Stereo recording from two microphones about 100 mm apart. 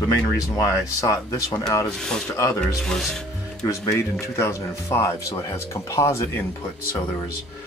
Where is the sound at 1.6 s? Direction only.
5° left (ahead or behind).